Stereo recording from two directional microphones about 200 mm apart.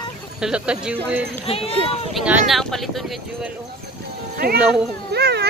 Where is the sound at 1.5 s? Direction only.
30° left (ahead or behind).